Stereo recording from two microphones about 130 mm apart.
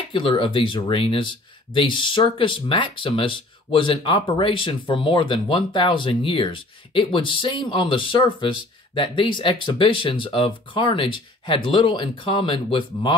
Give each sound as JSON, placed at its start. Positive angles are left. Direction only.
{"t": 0.1, "sound": "speech", "side_deg": 40}